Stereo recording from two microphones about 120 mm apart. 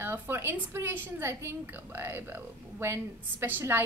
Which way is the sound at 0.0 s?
20° right (ahead or behind).